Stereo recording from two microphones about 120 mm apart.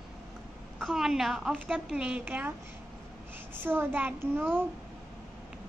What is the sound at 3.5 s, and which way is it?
Speech, 20° right (ahead or behind).